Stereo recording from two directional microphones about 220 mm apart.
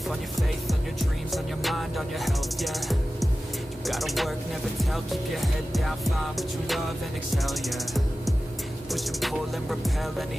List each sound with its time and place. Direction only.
1.3 s music: centre (ahead or behind)